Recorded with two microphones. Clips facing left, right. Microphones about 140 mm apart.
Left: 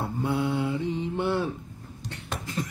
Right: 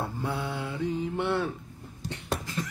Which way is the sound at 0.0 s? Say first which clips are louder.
Left 5 dB; 25° left (ahead or behind).